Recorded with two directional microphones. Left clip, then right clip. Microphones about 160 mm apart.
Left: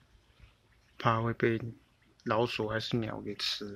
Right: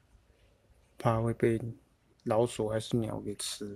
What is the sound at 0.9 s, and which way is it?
Speech, 20° right (ahead or behind).